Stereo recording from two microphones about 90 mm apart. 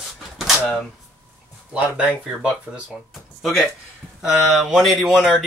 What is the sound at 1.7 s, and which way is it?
Speech, 10° right (ahead or behind).